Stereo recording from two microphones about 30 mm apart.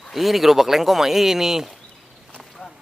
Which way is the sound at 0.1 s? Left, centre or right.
Centre.